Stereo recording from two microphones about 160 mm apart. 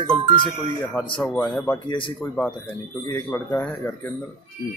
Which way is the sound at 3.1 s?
15° left (ahead or behind).